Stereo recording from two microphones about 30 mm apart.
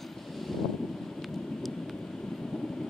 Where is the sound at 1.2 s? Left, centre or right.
Centre.